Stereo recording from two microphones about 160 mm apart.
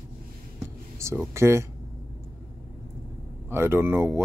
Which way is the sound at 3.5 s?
15° right (ahead or behind).